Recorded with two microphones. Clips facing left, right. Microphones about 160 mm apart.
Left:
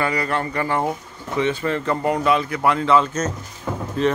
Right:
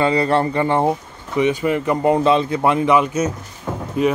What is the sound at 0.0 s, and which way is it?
Speech, 30° right (ahead or behind).